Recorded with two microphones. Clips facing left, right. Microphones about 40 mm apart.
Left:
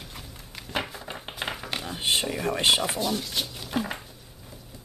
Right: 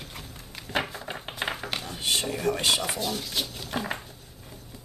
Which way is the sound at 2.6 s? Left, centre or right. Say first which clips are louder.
Left 7 dB; left.